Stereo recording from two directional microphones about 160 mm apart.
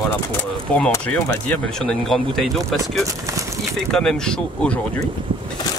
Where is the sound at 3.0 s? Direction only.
20° right (ahead or behind).